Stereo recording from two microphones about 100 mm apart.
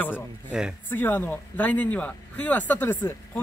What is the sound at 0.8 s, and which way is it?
Speech, 20° left (ahead or behind).